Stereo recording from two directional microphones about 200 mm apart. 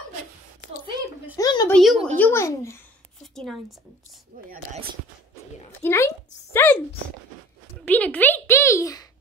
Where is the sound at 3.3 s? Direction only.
Centre (ahead or behind).